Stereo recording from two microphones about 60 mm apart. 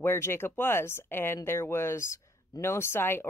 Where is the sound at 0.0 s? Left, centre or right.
Left.